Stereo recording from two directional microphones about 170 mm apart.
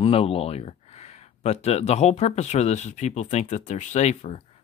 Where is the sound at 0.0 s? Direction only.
35° left (ahead or behind).